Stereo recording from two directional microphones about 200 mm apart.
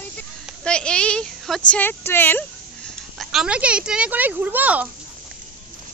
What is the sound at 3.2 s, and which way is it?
Speech, centre (ahead or behind).